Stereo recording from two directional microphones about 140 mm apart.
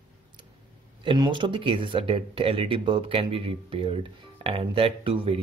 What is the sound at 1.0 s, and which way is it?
Speech, 35° right (ahead or behind).